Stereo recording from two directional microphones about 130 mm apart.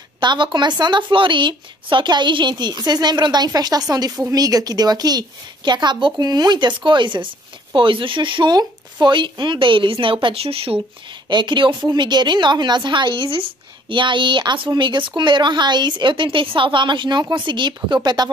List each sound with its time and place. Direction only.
0.2 s a woman's voice: 35° right (ahead or behind)
11.2 s a woman's voice: 35° right (ahead or behind)